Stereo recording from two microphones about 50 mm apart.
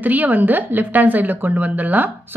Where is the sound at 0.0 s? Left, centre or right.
Right.